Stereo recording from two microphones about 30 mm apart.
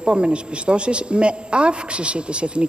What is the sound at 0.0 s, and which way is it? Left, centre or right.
A woman's voice, right.